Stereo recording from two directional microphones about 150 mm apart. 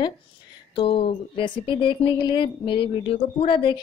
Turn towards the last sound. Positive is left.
turn(degrees=35)  # may be behind; listen again after turning